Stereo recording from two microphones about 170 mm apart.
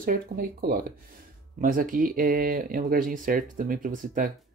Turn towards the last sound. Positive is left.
turn(degrees=-50)  # may be behind; listen again after turning